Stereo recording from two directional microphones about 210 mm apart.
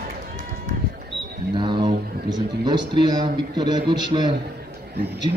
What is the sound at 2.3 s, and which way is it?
A man's voice, 20° right (ahead or behind).